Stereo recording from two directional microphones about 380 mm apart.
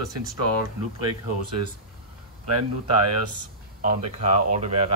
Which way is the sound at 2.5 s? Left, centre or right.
Right.